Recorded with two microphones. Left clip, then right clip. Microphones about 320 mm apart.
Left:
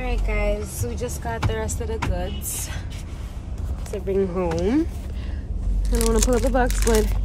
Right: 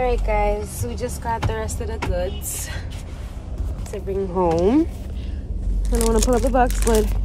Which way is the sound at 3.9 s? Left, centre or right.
Centre.